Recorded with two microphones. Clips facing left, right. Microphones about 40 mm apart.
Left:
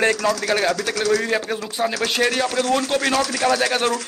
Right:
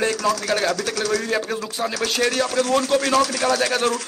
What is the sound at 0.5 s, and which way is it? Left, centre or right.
Speech, centre.